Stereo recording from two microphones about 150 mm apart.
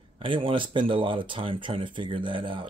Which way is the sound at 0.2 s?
35° right (ahead or behind).